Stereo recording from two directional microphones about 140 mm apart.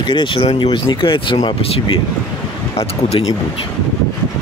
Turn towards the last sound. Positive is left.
turn(degrees=45)  # may be behind; listen again after turning